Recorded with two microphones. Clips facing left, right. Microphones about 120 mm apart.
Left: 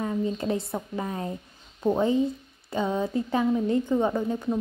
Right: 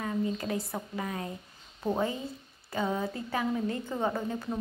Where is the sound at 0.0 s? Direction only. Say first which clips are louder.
Left 4 dB; 30° left (ahead or behind).